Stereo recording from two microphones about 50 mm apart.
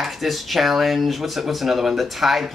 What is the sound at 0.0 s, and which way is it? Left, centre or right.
Speech, centre.